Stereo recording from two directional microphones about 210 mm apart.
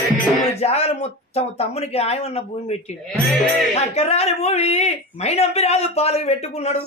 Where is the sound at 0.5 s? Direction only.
30° left (ahead or behind).